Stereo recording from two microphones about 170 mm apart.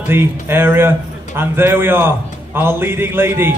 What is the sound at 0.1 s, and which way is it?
A man's voice, 15° right (ahead or behind).